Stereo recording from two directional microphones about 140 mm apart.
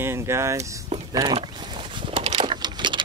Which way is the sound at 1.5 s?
35° right (ahead or behind).